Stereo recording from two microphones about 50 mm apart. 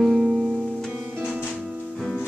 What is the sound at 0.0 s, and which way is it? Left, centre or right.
Music, centre.